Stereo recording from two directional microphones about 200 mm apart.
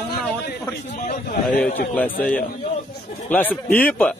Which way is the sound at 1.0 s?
45° left (ahead or behind).